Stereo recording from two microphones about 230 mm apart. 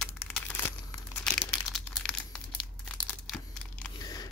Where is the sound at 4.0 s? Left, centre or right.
Centre.